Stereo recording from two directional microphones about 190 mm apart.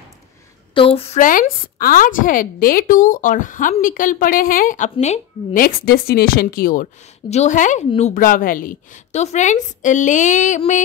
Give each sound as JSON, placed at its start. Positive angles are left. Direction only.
{"t": 0.7, "sound": "a woman's voice", "side_deg": 30}
{"t": 1.2, "sound": "a woman's voice", "side_deg": 45}
{"t": 5.6, "sound": "a woman's voice", "side_deg": 50}